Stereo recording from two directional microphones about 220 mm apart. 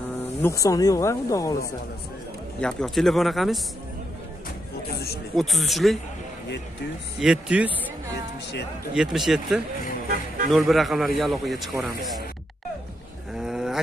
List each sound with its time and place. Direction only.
0.4 s speech: 15° left (ahead or behind)
2.6 s speech: centre (ahead or behind)
5.3 s speech: centre (ahead or behind)
7.2 s speech: 5° right (ahead or behind)
8.9 s speech: centre (ahead or behind)
10.0 s speech: 40° right (ahead or behind)
10.5 s speech: centre (ahead or behind)
13.3 s a sound: centre (ahead or behind)